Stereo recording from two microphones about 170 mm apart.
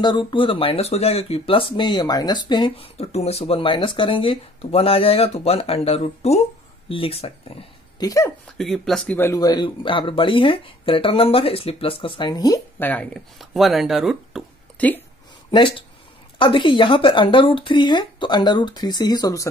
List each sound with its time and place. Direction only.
0.0 s speech: 25° left (ahead or behind)
8.0 s speech: 20° left (ahead or behind)
8.5 s speech: centre (ahead or behind); by 12.6 s 25° left (ahead or behind)
12.7 s speech: 10° left (ahead or behind)
14.8 s speech: 10° left (ahead or behind)
16.3 s speech: 30° left (ahead or behind)